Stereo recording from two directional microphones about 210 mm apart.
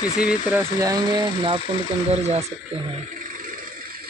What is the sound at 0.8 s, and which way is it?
Speech, 20° right (ahead or behind).